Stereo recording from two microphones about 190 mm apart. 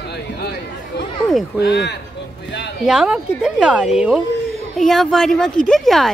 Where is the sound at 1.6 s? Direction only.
65° left (ahead or behind).